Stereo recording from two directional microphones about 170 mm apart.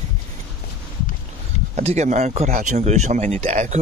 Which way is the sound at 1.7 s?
40° right (ahead or behind).